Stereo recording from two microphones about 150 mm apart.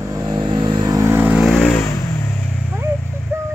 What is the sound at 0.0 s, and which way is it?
Vehicle, 25° right (ahead or behind).